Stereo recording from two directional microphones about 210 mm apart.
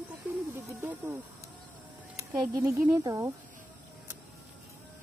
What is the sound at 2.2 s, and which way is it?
Speech, 10° right (ahead or behind).